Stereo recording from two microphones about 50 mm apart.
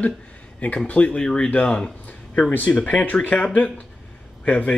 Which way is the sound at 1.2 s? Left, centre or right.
Centre.